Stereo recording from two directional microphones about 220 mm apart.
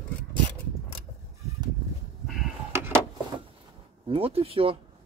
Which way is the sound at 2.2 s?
5° right (ahead or behind).